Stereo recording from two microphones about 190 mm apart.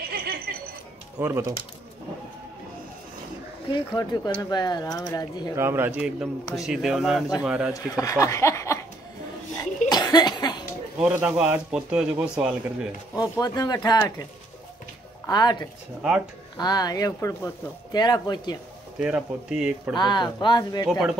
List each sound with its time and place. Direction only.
0.1 s a sound: 55° right (ahead or behind)
1.2 s speech: 15° right (ahead or behind)
3.7 s speech: 25° left (ahead or behind)
5.6 s a man's voice: 10° right (ahead or behind)
7.7 s speech: 15° left (ahead or behind)
9.8 s cough: 20° left (ahead or behind)
11.0 s a man's voice: 5° right (ahead or behind)
13.1 s speech: 20° left (ahead or behind)
15.2 s speech: 20° left (ahead or behind)
16.0 s a man's voice: 5° right (ahead or behind)
16.5 s speech: 20° left (ahead or behind)
18.9 s a man's voice: 5° right (ahead or behind)
20.0 s speech: 25° left (ahead or behind)